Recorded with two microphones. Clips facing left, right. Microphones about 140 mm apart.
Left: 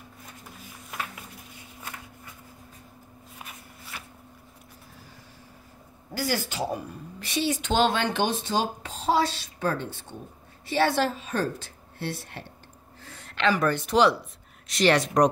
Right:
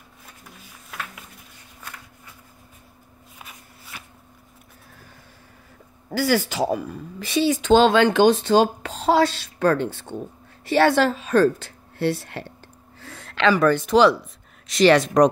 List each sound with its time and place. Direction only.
6.1 s speech: 90° right